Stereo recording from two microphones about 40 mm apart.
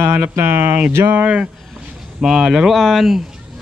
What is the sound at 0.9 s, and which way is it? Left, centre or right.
Speech, right.